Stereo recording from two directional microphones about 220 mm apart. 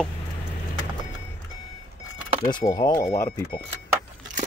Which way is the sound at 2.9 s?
40° left (ahead or behind).